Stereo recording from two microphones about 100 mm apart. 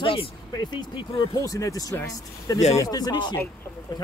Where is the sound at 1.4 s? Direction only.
35° left (ahead or behind).